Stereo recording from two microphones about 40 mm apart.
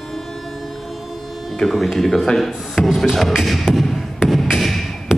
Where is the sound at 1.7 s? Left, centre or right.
Centre.